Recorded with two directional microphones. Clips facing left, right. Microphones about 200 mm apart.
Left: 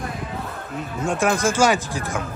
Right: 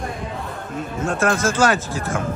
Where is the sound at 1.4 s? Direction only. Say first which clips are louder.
Even; 10° left (ahead or behind).